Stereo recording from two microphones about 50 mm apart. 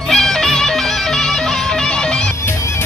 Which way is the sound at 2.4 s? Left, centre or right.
Left.